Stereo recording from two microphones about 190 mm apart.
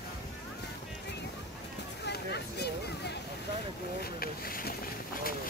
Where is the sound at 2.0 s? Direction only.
60° left (ahead or behind).